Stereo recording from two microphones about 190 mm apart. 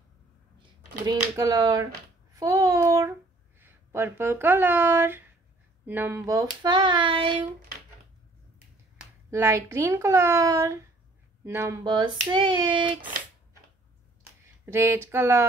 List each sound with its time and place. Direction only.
0.6 s speech: 20° right (ahead or behind)
2.3 s a sound: 20° right (ahead or behind)
5.9 s hands: 10° right (ahead or behind)
8.9 s speech: 15° right (ahead or behind)
11.4 s hands: 15° right (ahead or behind)
14.7 s a sound: 15° right (ahead or behind)